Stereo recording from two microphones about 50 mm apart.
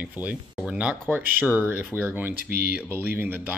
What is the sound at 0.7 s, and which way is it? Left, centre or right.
Speech, right.